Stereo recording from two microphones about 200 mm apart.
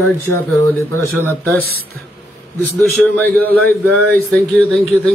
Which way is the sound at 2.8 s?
10° left (ahead or behind).